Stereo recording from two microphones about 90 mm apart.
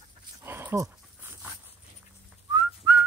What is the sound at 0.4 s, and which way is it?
Dog, 25° right (ahead or behind).